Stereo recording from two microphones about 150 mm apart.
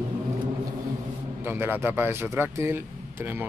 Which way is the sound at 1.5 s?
15° right (ahead or behind).